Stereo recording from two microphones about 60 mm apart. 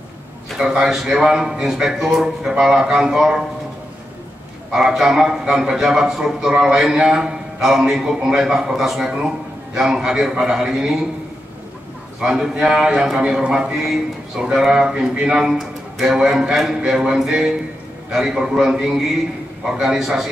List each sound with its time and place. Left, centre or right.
0.7 s a man's voice: centre
4.7 s a man's voice: centre
12.2 s a man's voice: centre